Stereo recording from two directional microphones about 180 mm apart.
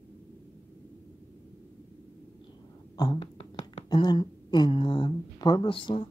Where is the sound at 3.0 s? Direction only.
25° left (ahead or behind).